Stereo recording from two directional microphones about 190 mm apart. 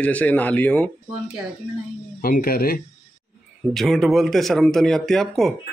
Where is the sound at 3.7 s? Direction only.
Centre (ahead or behind).